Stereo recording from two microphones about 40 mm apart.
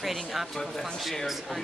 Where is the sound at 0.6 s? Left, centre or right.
Centre.